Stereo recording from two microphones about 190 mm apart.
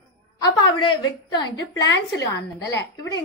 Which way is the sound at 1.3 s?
20° left (ahead or behind).